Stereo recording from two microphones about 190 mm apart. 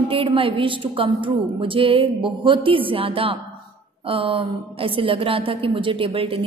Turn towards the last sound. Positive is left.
turn(degrees=-30)  # may be behind; listen again after turning